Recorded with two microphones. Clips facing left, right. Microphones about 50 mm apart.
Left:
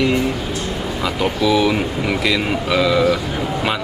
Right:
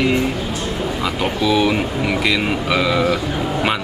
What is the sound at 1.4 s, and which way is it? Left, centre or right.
Speech, centre.